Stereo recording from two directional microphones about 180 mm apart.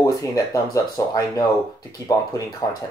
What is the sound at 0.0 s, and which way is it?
Speech, 20° left (ahead or behind).